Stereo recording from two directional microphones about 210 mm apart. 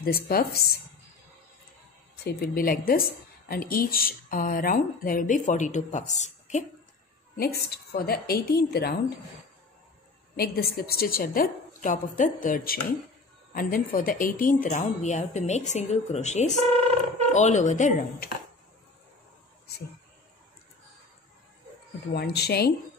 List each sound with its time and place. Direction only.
0.0 s a woman's voice: 45° left (ahead or behind)
2.2 s a woman's voice: 45° left (ahead or behind)
7.3 s a woman's voice: 50° left (ahead or behind)
10.3 s a woman's voice: 45° left (ahead or behind)
22.1 s a woman's voice: 50° left (ahead or behind)